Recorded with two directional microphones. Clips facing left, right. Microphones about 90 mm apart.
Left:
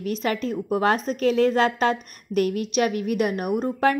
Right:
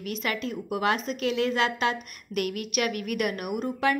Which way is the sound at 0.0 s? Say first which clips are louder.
Left 5 dB; 35° left (ahead or behind).